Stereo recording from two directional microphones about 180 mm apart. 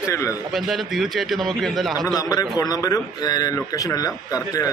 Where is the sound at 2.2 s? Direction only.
20° left (ahead or behind).